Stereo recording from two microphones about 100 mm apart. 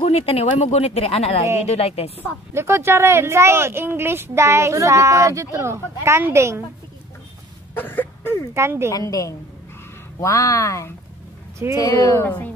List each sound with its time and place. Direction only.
0.0 s speech: 85° left
2.5 s a woman's voice: 25° right (ahead or behind)
7.7 s a sound: 20° left (ahead or behind)
8.5 s a woman's voice: 25° right (ahead or behind)
8.9 s speech: 35° left (ahead or behind)
12.2 s speech: 15° left (ahead or behind)